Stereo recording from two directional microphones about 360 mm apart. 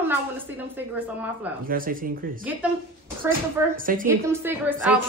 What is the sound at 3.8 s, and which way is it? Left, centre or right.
Speech, right.